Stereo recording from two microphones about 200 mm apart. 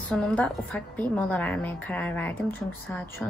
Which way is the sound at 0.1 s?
5° left (ahead or behind).